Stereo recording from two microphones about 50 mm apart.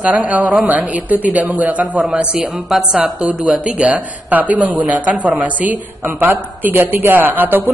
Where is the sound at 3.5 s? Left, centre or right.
Right.